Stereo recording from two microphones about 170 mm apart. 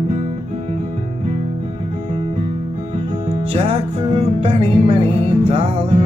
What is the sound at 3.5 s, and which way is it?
Music, 35° right (ahead or behind).